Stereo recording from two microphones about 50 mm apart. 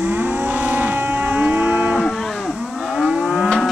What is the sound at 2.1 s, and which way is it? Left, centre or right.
Livestock, centre.